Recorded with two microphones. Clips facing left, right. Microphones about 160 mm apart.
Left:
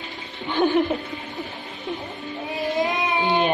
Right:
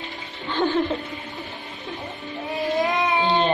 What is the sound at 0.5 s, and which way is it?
Laughter, 15° left (ahead or behind).